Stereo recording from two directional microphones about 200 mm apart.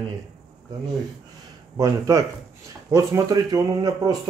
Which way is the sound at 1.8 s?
15° right (ahead or behind).